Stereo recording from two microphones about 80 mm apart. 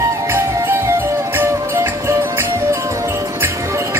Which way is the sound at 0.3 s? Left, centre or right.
Right.